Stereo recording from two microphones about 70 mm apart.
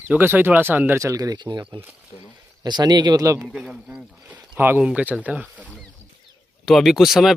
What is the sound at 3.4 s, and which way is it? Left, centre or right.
Bell, centre.